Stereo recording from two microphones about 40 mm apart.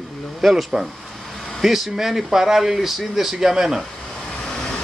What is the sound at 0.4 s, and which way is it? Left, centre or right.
A man's voice, centre.